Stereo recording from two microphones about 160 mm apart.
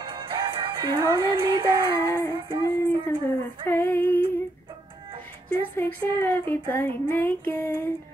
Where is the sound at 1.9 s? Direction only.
25° left (ahead or behind).